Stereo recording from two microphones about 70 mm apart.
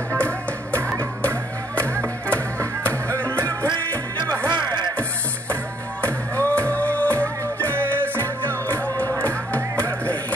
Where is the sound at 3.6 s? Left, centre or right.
Right.